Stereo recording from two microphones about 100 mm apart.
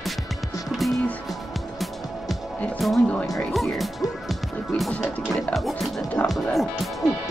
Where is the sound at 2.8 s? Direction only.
Centre (ahead or behind).